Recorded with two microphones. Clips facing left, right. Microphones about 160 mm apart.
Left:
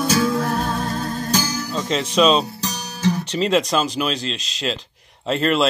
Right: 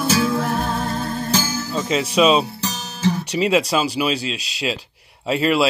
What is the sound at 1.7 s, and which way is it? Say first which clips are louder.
Speech: right 1 dB; 5° right (ahead or behind).